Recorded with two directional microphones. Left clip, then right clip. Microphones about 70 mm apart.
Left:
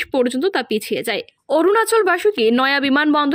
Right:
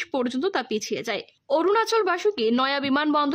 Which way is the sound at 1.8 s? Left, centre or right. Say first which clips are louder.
Left 6 dB; left.